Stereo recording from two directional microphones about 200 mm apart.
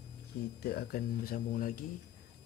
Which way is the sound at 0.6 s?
50° left (ahead or behind).